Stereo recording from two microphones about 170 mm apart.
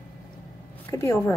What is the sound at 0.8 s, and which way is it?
Speech, 15° left (ahead or behind).